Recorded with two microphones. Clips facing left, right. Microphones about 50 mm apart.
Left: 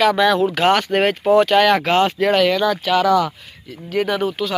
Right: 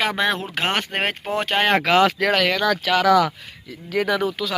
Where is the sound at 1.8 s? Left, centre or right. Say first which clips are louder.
Left 1 dB; right.